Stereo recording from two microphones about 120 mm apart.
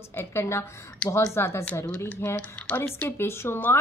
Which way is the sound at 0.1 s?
20° left (ahead or behind).